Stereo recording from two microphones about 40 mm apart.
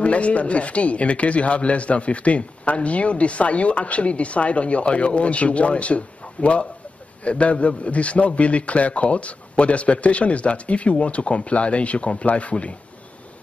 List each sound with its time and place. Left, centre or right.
0.0 s speech: left